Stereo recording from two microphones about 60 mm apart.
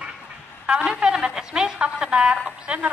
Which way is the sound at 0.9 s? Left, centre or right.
Centre.